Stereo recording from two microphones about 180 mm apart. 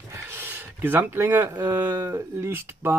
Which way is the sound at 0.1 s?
15° right (ahead or behind).